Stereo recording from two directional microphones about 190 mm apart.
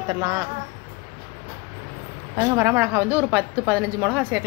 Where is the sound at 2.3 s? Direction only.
20° right (ahead or behind).